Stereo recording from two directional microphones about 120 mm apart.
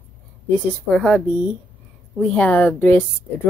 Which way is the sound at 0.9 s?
5° left (ahead or behind).